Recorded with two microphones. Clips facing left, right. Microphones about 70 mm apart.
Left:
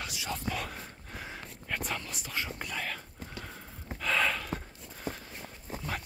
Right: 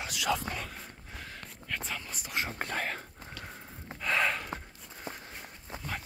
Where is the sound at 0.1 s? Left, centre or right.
Right.